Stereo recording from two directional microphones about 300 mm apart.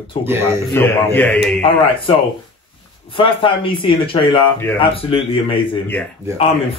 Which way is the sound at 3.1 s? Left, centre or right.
Centre.